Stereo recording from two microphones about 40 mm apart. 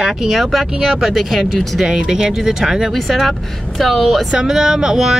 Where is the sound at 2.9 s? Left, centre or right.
Centre.